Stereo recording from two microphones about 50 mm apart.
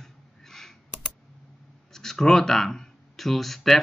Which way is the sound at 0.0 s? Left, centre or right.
Centre.